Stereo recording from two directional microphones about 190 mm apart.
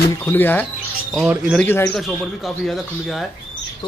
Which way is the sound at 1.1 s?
5° right (ahead or behind).